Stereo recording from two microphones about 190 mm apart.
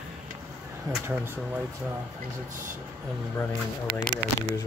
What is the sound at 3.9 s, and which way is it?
Speech, 55° right (ahead or behind).